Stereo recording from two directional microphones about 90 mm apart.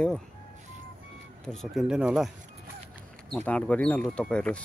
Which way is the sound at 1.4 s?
5° left (ahead or behind).